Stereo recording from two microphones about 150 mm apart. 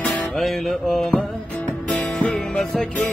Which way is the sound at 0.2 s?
Centre (ahead or behind).